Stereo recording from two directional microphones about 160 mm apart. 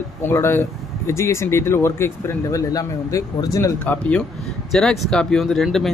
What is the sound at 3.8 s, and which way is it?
Speech, 10° left (ahead or behind).